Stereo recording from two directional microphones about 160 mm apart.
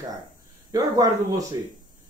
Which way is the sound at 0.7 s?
25° right (ahead or behind).